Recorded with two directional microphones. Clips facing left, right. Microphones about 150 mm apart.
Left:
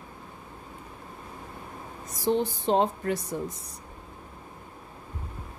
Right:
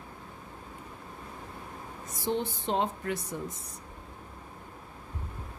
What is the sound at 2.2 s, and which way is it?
Speech, 35° left (ahead or behind).